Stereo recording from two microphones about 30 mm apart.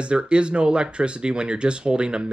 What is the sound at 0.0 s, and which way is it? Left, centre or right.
Speech, right.